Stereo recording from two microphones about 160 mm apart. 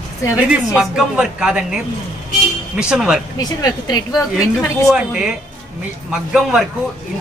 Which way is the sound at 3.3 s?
25° left (ahead or behind).